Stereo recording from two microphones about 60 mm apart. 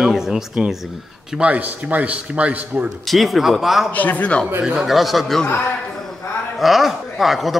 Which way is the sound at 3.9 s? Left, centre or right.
Left.